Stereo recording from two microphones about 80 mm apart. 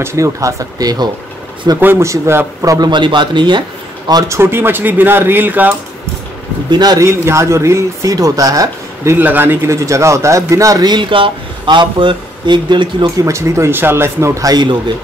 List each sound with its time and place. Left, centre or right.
0.0 s speech: right
1.8 s speech: right
2.0 s speech: right
2.9 s a man's voice: right
4.3 s speech: right
6.7 s a man's voice: right
7.0 s speech: right
9.1 s speech: right
9.7 s speech: right
10.9 s speech: right
13.0 s speech: right
14.5 s a man's voice: right